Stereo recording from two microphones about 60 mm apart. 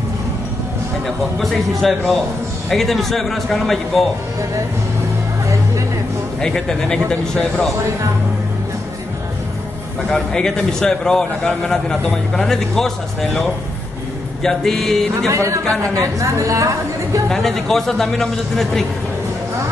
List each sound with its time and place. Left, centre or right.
1.0 s a man's voice: centre
6.4 s a man's voice: centre
10.0 s a man's voice: centre
15.2 s a woman's voice: right
17.3 s a man's voice: centre